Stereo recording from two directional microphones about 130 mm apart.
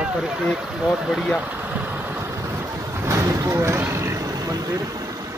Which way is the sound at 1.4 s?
15° right (ahead or behind).